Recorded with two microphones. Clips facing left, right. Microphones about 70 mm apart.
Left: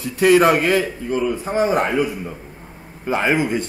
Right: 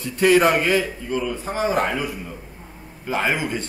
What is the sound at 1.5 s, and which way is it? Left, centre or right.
Speech, left.